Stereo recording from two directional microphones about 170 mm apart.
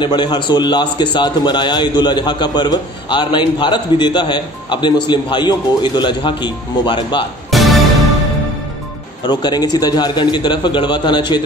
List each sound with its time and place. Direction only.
0.0 s a man's voice: 25° left (ahead or behind)
7.5 s music: centre (ahead or behind)
9.2 s a man's voice: 25° left (ahead or behind)